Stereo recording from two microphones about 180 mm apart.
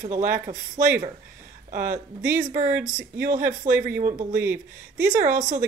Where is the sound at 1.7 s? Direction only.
45° right (ahead or behind).